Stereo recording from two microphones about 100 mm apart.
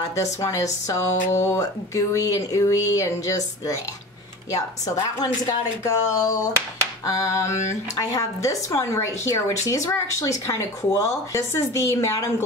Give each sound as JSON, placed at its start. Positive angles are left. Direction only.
{"t": 0.1, "sound": "speech", "side_deg": 35}